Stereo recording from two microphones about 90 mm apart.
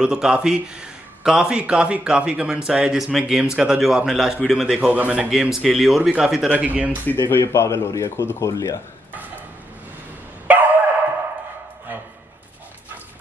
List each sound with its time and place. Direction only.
0.0 s a man's voice: 10° right (ahead or behind)
4.9 s a man's voice: 15° right (ahead or behind)
5.3 s speech: 5° right (ahead or behind)
6.5 s a man's voice: 15° right (ahead or behind)
7.1 s speech: 25° left (ahead or behind)
10.4 s dog: 20° right (ahead or behind)